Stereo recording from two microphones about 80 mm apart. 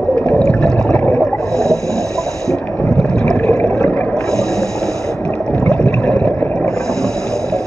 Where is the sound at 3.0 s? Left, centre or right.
Centre.